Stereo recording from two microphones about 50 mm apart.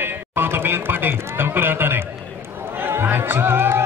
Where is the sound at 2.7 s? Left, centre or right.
Right.